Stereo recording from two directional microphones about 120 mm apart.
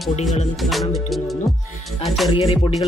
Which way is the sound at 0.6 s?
Centre (ahead or behind).